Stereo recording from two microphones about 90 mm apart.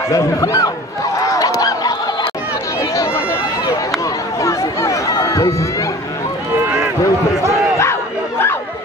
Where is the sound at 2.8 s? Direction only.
40° left (ahead or behind).